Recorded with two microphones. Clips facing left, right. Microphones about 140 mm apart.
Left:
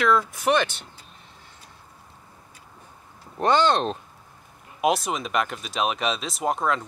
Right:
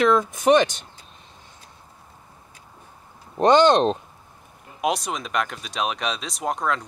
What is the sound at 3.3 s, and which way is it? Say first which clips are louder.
Speech: right 5 dB; 20° right (ahead or behind).